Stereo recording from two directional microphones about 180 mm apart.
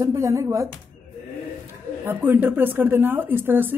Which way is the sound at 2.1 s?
10° right (ahead or behind).